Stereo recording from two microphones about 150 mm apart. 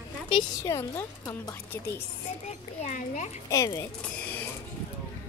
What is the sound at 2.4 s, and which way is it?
Speech, 55° left (ahead or behind).